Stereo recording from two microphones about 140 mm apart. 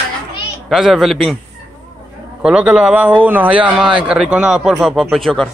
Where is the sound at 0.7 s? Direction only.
5° right (ahead or behind).